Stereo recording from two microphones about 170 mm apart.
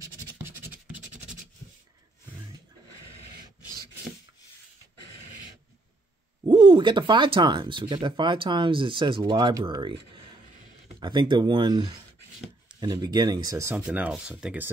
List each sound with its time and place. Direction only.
6.4 s speech: 25° right (ahead or behind); by 14.7 s 10° right (ahead or behind)